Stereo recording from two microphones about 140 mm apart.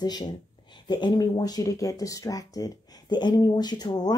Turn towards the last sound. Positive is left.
turn(degrees=30)  # may be behind; listen again after turning